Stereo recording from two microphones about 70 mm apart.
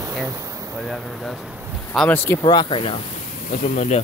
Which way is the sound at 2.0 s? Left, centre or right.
Left.